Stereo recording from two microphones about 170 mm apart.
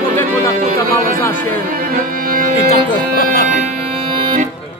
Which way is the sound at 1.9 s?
55° right (ahead or behind).